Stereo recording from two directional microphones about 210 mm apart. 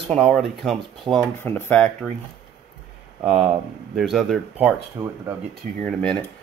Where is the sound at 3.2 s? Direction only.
5° right (ahead or behind).